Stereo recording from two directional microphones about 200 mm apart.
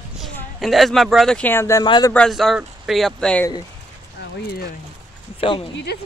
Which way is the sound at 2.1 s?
Centre (ahead or behind).